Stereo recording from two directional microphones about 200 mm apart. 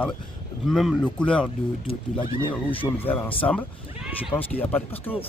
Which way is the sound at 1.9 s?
30° left (ahead or behind).